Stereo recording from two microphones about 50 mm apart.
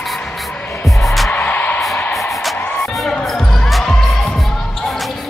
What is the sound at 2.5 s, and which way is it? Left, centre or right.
Music, left.